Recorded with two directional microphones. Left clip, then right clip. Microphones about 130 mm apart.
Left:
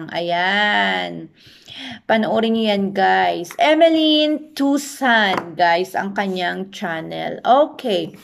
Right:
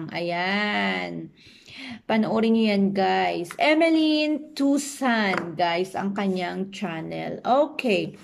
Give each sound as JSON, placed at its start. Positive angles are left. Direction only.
{"t": 0.1, "sound": "a woman's voice", "side_deg": -20}
{"t": 7.8, "sound": "speech", "side_deg": 55}